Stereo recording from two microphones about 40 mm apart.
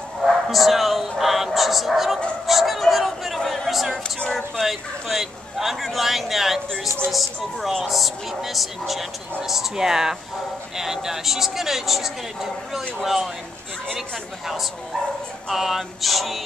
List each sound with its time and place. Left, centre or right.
0.2 s speech: centre
2.4 s a sound: centre
4.6 s a woman's voice: centre
15.4 s speech: centre